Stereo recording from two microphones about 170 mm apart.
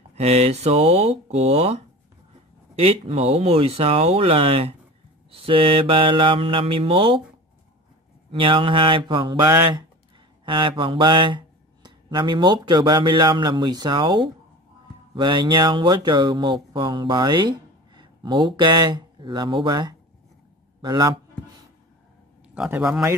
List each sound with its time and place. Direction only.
0.1 s speech: 40° right (ahead or behind)
8.3 s speech: 30° right (ahead or behind)
22.5 s speech: 10° right (ahead or behind)